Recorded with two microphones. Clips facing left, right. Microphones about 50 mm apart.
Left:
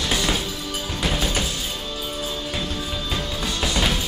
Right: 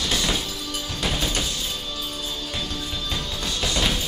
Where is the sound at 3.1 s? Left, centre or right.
Centre.